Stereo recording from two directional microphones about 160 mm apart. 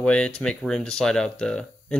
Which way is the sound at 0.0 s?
5° left (ahead or behind).